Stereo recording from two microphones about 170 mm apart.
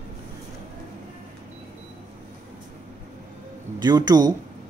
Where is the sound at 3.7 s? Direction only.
25° right (ahead or behind).